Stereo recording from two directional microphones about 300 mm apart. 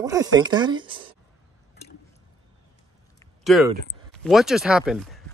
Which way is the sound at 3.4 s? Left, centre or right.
Centre.